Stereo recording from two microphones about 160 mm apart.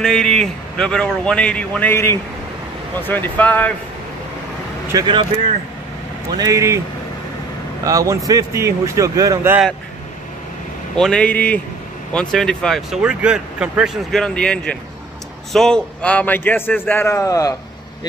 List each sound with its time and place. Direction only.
0.0 s a man's voice: 5° left (ahead or behind)
4.9 s speech: 20° right (ahead or behind)
6.3 s speech: 20° right (ahead or behind)
7.8 s speech: 20° right (ahead or behind)
11.0 s a man's voice: 5° left (ahead or behind); by 17.6 s 20° left (ahead or behind)